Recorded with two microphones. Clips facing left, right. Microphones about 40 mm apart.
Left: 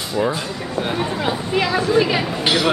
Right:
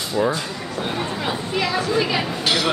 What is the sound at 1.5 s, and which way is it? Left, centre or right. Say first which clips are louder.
Speech: left 4 dB; centre.